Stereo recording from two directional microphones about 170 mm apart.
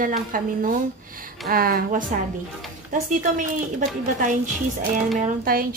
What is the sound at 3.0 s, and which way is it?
Speech, 50° right (ahead or behind).